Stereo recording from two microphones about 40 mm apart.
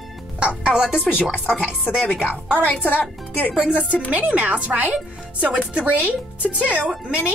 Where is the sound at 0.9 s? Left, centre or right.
Centre.